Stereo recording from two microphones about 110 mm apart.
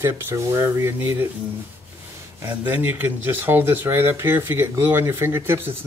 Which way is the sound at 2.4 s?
15° right (ahead or behind).